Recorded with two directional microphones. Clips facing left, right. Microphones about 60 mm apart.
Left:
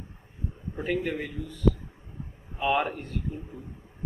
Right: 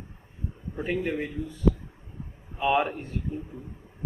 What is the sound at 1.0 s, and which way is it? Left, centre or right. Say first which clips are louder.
Speech: right 2 dB; centre.